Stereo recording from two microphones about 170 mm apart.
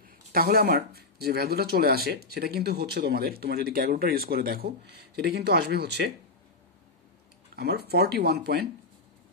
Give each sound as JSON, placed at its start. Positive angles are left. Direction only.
{"t": 0.3, "sound": "speech", "side_deg": -60}
{"t": 7.5, "sound": "speech", "side_deg": -70}